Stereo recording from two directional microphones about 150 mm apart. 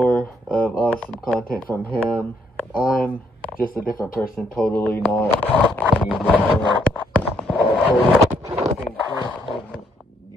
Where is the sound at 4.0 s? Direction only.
10° left (ahead or behind).